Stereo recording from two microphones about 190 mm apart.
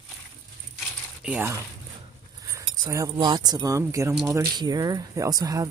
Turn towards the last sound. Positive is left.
turn(degrees=-20)  # may be behind; listen again after turning